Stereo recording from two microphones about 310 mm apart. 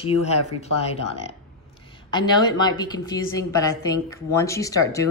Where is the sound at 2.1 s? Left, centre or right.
Centre.